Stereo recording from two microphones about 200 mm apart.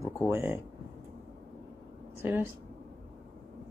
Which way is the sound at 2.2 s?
10° right (ahead or behind).